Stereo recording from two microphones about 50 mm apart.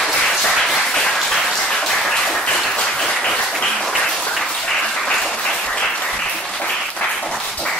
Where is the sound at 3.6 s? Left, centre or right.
Centre.